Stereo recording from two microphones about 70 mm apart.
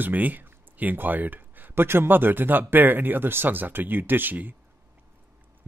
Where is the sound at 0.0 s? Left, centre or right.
Right.